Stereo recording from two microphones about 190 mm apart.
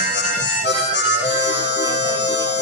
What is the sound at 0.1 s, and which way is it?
Harmonica, 70° left (ahead or behind).